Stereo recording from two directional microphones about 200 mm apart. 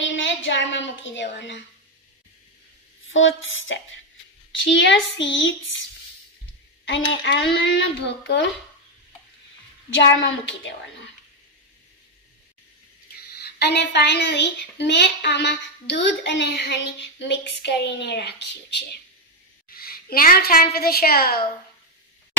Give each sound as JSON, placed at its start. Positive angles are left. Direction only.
{"t": 0.0, "sound": "a sound", "side_deg": 65}
{"t": 3.1, "sound": "a child's voice", "side_deg": 75}
{"t": 9.8, "sound": "a child's voice", "side_deg": 70}
{"t": 13.3, "sound": "a woman's voice", "side_deg": 55}